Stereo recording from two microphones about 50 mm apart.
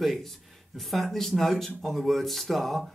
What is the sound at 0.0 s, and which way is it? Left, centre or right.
Speech, centre.